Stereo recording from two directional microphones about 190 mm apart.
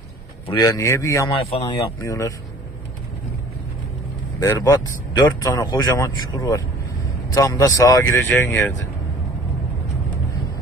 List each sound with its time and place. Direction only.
0.6 s speech: 15° left (ahead or behind)
1.5 s speech: 30° left (ahead or behind)
2.0 s speech: 15° left (ahead or behind)
4.4 s speech: 15° left (ahead or behind)